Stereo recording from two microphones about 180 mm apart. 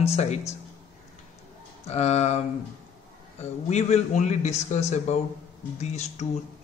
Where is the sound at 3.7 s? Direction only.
40° left (ahead or behind).